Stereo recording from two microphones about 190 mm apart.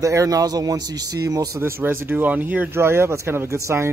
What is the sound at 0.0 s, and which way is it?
A man's voice, 15° right (ahead or behind).